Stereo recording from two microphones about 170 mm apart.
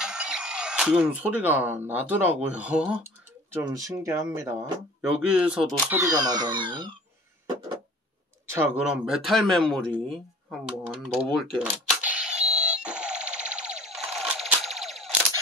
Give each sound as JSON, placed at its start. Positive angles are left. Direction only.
{"t": 0.0, "sound": "speech", "side_deg": -5}
{"t": 3.7, "sound": "speech", "side_deg": -20}
{"t": 5.0, "sound": "speech", "side_deg": -5}
{"t": 5.9, "sound": "speech", "side_deg": -20}
{"t": 8.5, "sound": "speech", "side_deg": -10}
{"t": 11.5, "sound": "cash register", "side_deg": -5}